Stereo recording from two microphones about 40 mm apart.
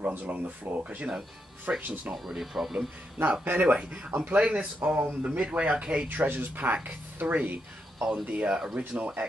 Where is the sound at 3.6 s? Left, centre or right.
Right.